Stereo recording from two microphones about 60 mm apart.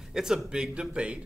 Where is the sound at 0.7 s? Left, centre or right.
Centre.